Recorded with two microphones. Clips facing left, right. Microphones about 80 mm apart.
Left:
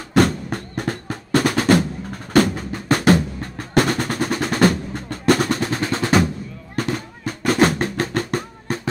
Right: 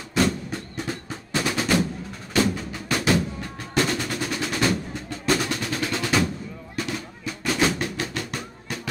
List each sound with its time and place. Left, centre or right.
0.1 s drum: left
2.3 s music: left
3.7 s percussion: left
6.8 s drum: left